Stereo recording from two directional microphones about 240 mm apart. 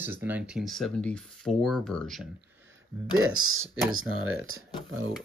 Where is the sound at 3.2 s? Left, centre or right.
Right.